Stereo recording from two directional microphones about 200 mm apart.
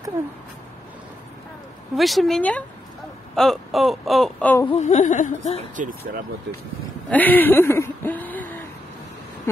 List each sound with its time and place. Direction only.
2.0 s a sound: centre (ahead or behind)
4.7 s speech: 35° left (ahead or behind)
5.6 s speech: 40° right (ahead or behind)
7.1 s speech: 10° left (ahead or behind)